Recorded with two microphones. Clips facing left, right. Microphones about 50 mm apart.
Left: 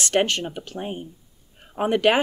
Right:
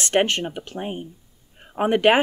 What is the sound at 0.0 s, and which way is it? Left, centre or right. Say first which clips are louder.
Speech: right 1 dB; right.